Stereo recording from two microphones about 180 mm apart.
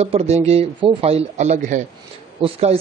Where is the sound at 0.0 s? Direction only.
35° right (ahead or behind).